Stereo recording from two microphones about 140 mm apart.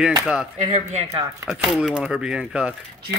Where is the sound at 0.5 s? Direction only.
55° right (ahead or behind).